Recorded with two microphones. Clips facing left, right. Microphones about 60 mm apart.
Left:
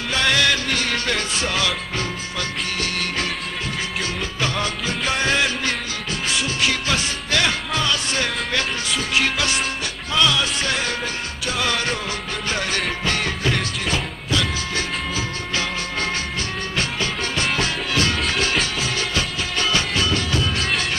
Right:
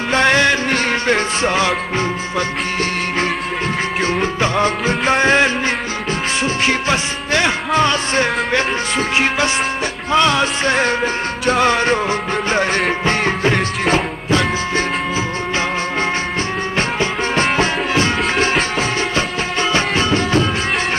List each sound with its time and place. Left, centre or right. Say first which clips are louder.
0.1 s music: right 6 dB; right
4.0 s music: right 9 dB; right
16.7 s music: right 5 dB; right